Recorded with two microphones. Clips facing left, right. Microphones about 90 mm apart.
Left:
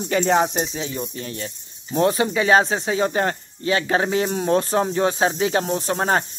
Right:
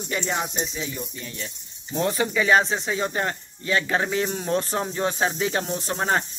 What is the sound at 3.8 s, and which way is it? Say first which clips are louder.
Speech: left 4 dB; 45° left (ahead or behind).